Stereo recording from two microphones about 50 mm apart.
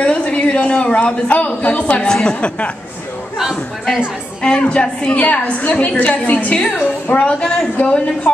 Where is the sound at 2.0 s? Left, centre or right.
Centre.